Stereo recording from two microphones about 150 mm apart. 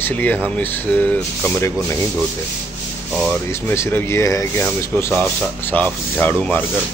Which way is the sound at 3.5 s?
15° left (ahead or behind).